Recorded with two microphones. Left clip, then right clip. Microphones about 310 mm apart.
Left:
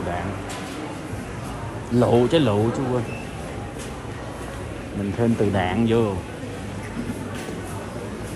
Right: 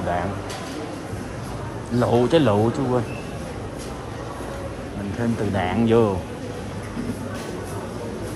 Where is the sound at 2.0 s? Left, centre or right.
Centre.